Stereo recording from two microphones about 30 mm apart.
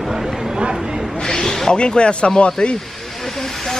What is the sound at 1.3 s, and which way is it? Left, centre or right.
Snake, left.